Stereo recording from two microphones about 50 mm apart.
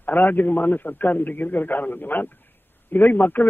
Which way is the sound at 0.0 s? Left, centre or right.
Left.